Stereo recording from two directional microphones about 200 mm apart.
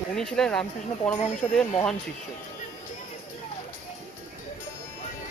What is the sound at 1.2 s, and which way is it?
Speech, 35° left (ahead or behind).